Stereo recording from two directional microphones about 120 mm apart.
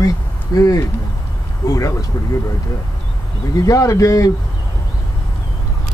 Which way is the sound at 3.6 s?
25° left (ahead or behind).